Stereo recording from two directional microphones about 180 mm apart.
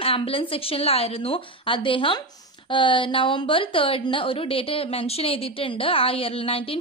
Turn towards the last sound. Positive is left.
turn(degrees=30)  # may be behind; listen again after turning